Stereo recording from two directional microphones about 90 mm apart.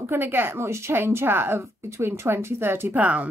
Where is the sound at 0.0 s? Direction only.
25° right (ahead or behind).